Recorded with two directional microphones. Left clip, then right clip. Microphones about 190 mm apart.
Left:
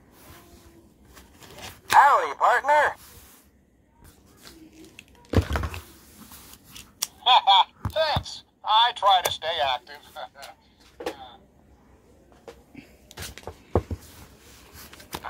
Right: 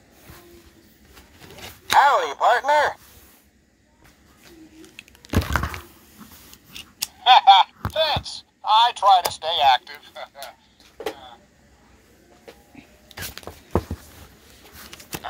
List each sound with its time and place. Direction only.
1.6 s speech: 10° right (ahead or behind)
5.2 s thunk: 45° right (ahead or behind)
7.2 s a sound: 15° right (ahead or behind)